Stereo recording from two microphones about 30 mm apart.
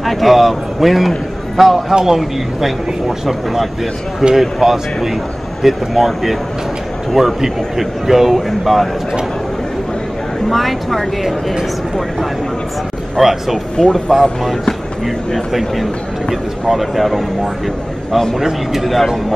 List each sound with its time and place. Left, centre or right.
0.0 s a man's voice: centre
10.5 s speech: centre
13.2 s speech: centre
13.7 s speech: centre
15.5 s speech: centre
18.4 s speech: centre
18.9 s speech: centre